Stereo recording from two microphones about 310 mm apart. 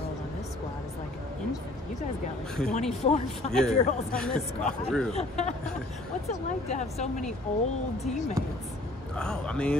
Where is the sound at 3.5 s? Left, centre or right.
Centre.